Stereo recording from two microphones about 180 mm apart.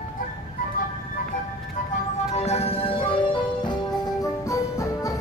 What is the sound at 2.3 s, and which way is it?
Music, 35° left (ahead or behind).